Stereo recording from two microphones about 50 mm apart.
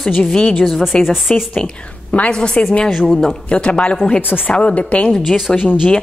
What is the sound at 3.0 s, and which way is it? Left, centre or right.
Speech, centre.